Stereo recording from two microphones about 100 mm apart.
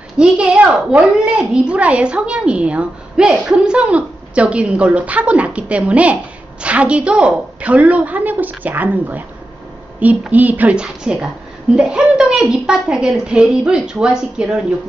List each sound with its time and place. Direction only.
0.2 s a woman's voice: 10° right (ahead or behind)